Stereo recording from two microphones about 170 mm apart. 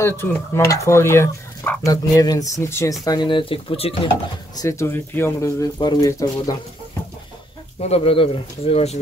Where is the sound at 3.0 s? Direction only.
25° left (ahead or behind).